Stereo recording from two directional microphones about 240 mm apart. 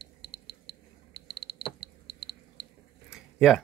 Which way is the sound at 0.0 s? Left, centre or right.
Left.